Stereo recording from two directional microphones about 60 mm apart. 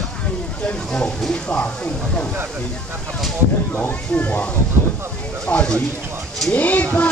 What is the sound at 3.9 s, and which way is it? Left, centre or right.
Speech, left.